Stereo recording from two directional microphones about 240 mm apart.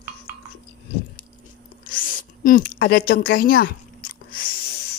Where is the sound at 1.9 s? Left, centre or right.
Left.